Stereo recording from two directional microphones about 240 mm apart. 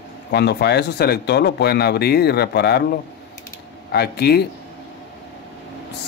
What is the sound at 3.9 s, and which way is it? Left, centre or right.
Speech, left.